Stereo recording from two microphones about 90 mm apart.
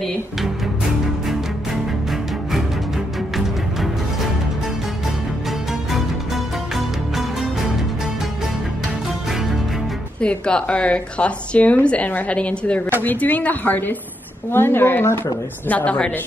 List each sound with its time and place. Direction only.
3.3 s music: centre (ahead or behind)
5.9 s music: centre (ahead or behind)
10.2 s a woman's voice: 10° left (ahead or behind)